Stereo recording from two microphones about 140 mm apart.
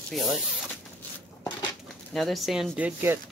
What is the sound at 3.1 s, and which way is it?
Speech, 15° right (ahead or behind).